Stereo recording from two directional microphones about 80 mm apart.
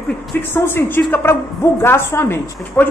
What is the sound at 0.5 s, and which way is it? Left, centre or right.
A woman's voice, left.